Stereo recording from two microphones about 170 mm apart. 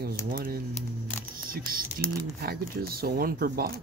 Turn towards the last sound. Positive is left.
turn(degrees=-65)  # may be behind; listen again after turning